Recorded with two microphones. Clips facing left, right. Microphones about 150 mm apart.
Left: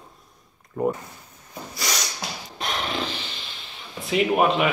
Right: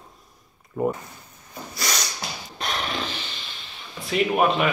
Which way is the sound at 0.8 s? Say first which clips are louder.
Even; 5° right (ahead or behind).